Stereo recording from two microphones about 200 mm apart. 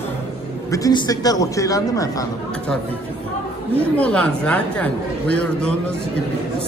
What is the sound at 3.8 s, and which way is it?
A woman's voice, 5° left (ahead or behind).